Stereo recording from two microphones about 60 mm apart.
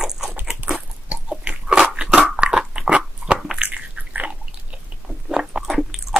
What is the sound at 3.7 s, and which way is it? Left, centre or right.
Biting, right.